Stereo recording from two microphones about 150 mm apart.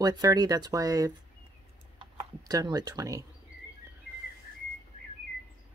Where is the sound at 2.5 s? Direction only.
25° right (ahead or behind).